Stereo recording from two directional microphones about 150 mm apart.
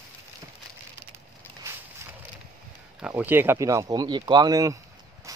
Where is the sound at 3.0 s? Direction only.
10° right (ahead or behind).